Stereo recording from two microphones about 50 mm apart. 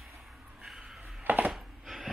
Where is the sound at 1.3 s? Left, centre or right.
Right.